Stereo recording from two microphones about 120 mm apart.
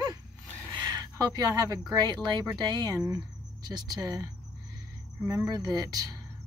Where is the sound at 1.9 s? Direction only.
40° right (ahead or behind).